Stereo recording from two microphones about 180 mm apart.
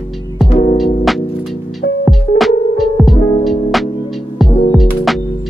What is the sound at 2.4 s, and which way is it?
Music, centre (ahead or behind).